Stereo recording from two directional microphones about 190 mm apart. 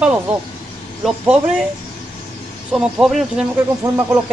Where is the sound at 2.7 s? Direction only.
Centre (ahead or behind).